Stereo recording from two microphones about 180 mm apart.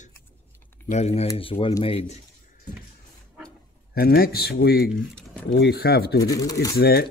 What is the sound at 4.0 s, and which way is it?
Speech, 55° left (ahead or behind).